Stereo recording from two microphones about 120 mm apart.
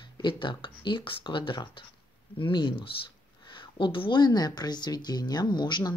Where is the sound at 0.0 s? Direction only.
40° left (ahead or behind).